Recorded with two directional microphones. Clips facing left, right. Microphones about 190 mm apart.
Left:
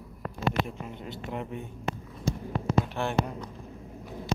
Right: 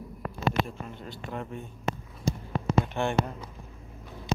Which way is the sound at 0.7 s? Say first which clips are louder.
Left 1 dB; 20° left (ahead or behind).